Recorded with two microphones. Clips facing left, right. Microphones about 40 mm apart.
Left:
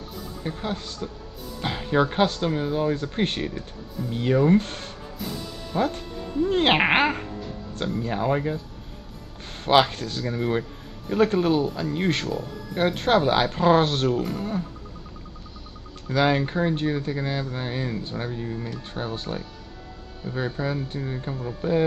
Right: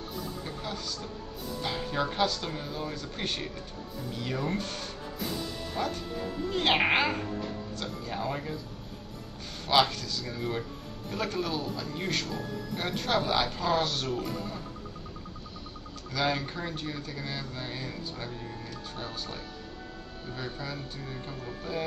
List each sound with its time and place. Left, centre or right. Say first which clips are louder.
0.4 s speech: left 6 dB; left
5.2 s speech: left 2 dB; centre
5.7 s speech: left 8 dB; centre
6.5 s speech: left 5 dB; left
9.7 s speech: left 6 dB; left
16.1 s speech: left 8 dB; left
21.6 s speech: left 12 dB; left